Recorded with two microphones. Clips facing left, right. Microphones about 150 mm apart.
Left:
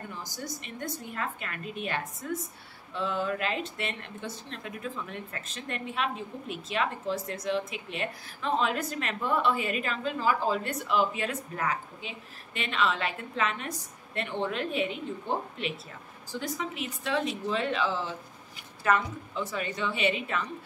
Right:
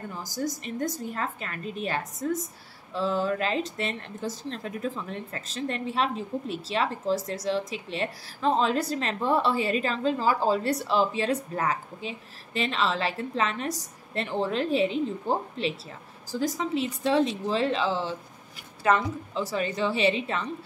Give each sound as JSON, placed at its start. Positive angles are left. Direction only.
{"t": 1.1, "sound": "a woman's voice", "side_deg": -35}
{"t": 19.5, "sound": "a woman's voice", "side_deg": -35}